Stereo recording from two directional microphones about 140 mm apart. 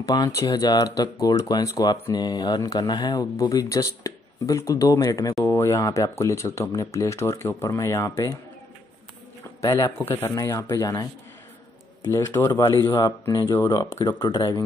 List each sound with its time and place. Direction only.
0.0 s speech: 30° left (ahead or behind)
9.6 s speech: 25° left (ahead or behind)
12.1 s speech: 15° left (ahead or behind)